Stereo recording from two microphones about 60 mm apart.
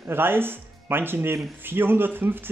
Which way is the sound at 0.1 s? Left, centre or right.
Right.